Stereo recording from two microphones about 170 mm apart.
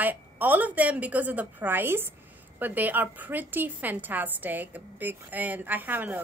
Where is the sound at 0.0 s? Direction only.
10° right (ahead or behind).